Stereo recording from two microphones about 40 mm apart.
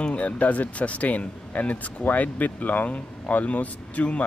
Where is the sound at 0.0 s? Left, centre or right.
Left.